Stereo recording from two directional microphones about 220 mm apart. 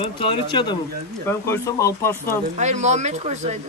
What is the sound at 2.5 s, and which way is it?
Speech, 30° right (ahead or behind).